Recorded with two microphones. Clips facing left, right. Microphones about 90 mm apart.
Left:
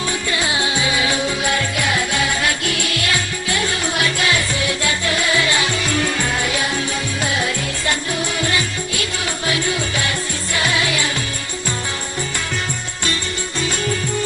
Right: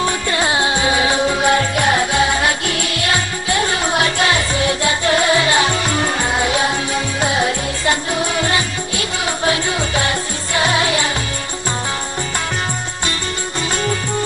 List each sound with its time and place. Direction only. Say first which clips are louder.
0.0 s music: right 4 dB; 40° right (ahead or behind)